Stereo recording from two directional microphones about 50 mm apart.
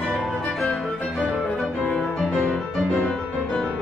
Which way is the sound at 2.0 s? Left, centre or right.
Centre.